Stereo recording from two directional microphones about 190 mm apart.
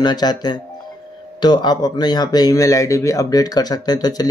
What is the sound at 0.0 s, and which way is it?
Speech, 20° left (ahead or behind).